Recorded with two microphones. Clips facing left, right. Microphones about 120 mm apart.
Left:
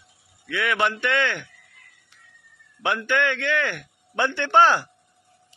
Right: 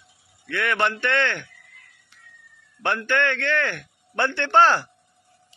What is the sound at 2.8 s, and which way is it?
A man's voice, 10° left (ahead or behind).